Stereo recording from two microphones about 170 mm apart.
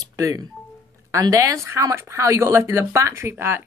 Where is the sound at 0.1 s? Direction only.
20° right (ahead or behind).